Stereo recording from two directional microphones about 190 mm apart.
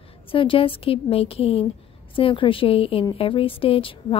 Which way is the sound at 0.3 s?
30° left (ahead or behind).